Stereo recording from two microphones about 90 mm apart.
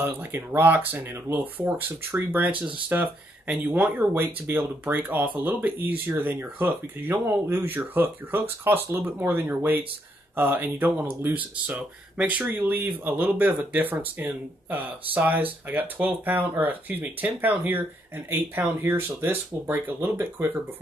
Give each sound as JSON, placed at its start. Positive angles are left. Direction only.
{"t": 0.0, "sound": "speech", "side_deg": -25}